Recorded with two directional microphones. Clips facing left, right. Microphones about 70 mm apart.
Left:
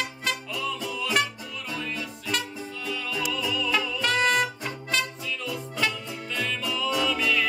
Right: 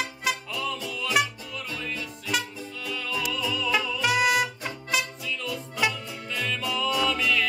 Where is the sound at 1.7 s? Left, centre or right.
Centre.